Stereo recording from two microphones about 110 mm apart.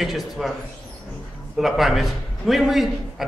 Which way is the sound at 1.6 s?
Centre (ahead or behind).